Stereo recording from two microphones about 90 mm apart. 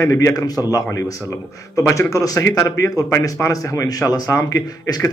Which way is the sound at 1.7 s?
35° left (ahead or behind).